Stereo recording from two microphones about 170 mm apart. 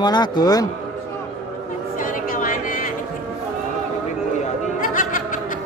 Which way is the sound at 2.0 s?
55° left (ahead or behind).